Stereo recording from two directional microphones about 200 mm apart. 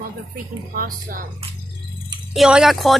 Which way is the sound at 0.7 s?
45° right (ahead or behind).